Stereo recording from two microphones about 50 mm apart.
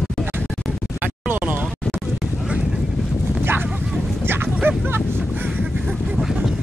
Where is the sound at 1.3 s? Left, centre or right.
Right.